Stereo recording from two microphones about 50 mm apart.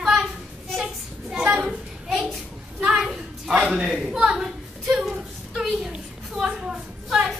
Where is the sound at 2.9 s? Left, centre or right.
Centre.